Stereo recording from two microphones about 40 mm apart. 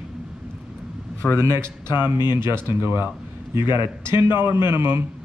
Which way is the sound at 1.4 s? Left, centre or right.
Right.